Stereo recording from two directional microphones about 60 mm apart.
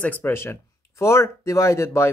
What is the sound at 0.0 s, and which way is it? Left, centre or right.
Speech, left.